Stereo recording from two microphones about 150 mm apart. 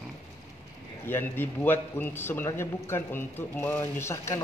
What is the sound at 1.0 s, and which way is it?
A man's voice, 15° left (ahead or behind).